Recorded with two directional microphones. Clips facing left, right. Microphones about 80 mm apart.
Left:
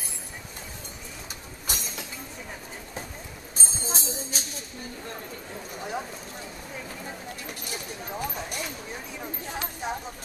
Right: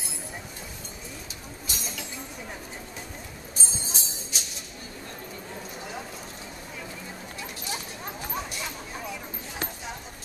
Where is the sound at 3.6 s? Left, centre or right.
Left.